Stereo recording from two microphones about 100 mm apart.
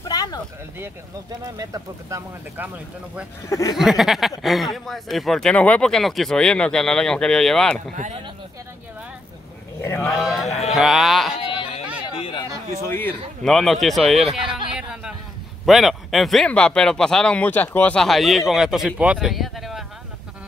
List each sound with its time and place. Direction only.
0.0 s a sound: 40° left (ahead or behind)
1.4 s speech: 35° right (ahead or behind)
3.4 s speech: 30° left (ahead or behind)
3.7 s speech: 5° right (ahead or behind)
9.8 s speech: 25° left (ahead or behind)
10.2 s speech: centre (ahead or behind)
11.3 s a sound: 70° left (ahead or behind)
12.8 s speech: 20° left (ahead or behind)
13.4 s speech: 5° left (ahead or behind)
14.4 s speech: 60° right (ahead or behind)
14.7 s a sound: 10° right (ahead or behind)
15.6 s speech: centre (ahead or behind); by 18.0 s 15° left (ahead or behind)
18.0 s speech: centre (ahead or behind)
19.2 s a sound: centre (ahead or behind)